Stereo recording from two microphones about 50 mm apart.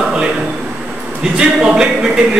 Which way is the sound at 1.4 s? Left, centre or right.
Centre.